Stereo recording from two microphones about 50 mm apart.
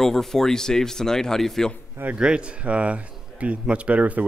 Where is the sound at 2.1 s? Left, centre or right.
Centre.